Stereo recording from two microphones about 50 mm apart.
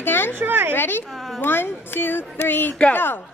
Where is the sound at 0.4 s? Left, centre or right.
Right.